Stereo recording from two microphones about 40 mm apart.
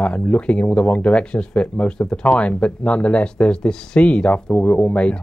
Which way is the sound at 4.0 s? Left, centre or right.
Left.